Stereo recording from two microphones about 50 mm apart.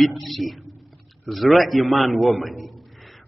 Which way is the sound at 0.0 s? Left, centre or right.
Centre.